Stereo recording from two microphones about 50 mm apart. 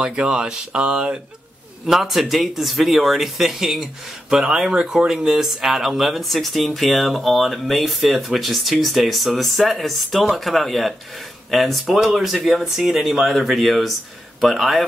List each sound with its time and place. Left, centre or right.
0.0 s speech: centre
1.9 s speech: centre